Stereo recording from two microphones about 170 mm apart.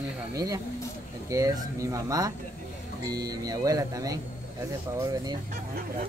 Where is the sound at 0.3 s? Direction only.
20° right (ahead or behind).